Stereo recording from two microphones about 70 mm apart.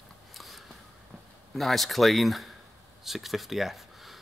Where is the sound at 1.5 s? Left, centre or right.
Centre.